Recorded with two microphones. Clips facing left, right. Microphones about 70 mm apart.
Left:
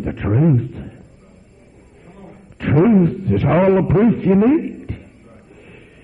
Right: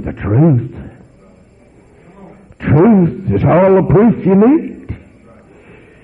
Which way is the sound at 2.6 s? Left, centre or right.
Right.